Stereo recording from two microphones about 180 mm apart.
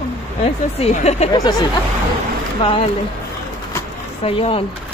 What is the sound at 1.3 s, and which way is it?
Speech, 25° left (ahead or behind).